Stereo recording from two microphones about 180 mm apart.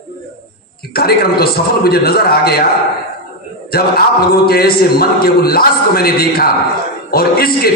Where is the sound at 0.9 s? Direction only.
60° left (ahead or behind).